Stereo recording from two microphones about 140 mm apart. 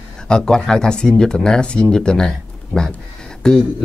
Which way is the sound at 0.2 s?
5° left (ahead or behind).